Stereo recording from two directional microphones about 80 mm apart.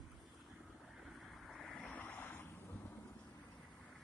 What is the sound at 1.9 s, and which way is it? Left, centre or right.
Boat, centre.